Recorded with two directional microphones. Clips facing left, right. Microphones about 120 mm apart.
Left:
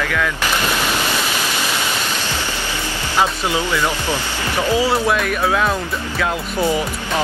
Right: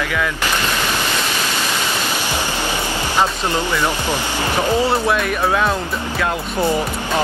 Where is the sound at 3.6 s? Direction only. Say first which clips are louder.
Right 1 dB; 15° right (ahead or behind).